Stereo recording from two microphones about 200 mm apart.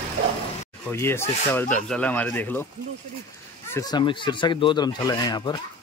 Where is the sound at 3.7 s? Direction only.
20° left (ahead or behind).